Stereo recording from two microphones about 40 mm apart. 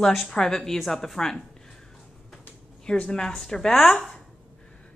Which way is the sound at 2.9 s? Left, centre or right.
Centre.